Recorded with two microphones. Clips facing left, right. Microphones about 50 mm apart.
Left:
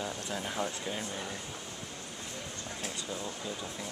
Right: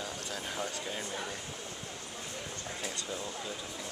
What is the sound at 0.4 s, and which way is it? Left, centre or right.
Speech, centre.